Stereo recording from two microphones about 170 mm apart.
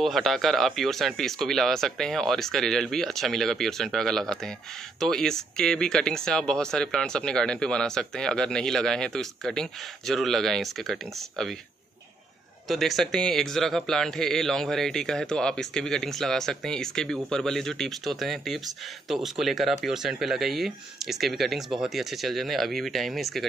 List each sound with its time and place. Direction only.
0.0 s speech: centre (ahead or behind)
12.6 s speech: centre (ahead or behind)